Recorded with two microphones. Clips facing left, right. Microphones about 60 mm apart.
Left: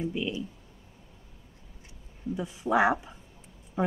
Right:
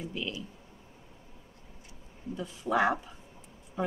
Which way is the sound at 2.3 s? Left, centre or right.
Centre.